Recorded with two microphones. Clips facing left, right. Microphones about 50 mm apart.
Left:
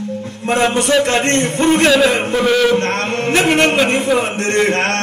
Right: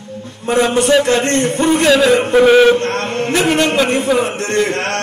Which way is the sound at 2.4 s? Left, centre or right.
Centre.